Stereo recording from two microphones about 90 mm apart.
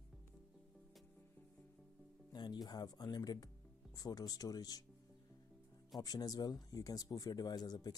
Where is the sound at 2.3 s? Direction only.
50° left (ahead or behind).